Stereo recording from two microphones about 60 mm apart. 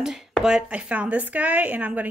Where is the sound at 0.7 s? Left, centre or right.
Right.